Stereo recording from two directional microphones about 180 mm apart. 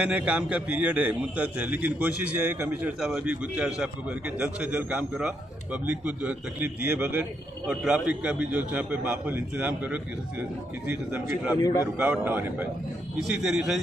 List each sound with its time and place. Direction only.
0.0 s a man's voice: 5° right (ahead or behind)
11.5 s speech: 20° left (ahead or behind)
11.8 s a man's voice: 10° right (ahead or behind)